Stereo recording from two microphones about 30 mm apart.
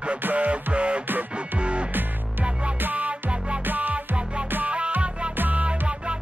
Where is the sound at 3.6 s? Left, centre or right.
Right.